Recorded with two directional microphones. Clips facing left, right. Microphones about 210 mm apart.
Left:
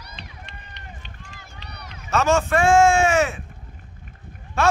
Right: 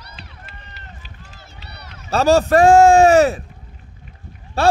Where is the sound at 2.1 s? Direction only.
35° right (ahead or behind).